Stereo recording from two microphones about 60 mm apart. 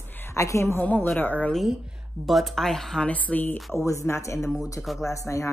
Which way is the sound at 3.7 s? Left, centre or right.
Left.